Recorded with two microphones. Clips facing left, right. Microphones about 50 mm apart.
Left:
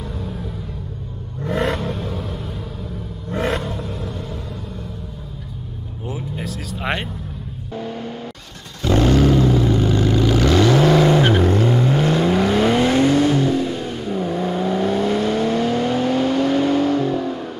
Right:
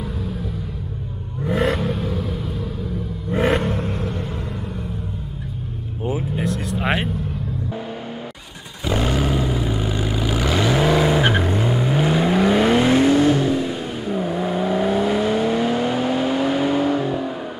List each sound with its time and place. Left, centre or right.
1.4 s vehicle: centre
3.3 s vehicle: centre
3.6 s vehicle: right
6.3 s vehicle: centre
8.8 s vehicle: centre